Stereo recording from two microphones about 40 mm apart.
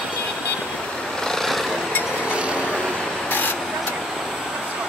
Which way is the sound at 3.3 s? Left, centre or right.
Left.